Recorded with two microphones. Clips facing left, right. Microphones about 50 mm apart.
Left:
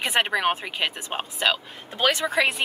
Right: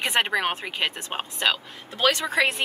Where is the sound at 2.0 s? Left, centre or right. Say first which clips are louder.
Even; centre.